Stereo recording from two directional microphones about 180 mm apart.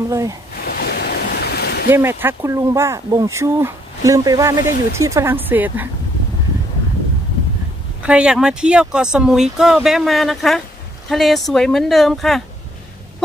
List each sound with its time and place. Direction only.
0.1 s speech: 20° right (ahead or behind)
0.7 s waves: 60° left (ahead or behind)
1.9 s speech: 15° right (ahead or behind)
8.0 s speech: 5° right (ahead or behind)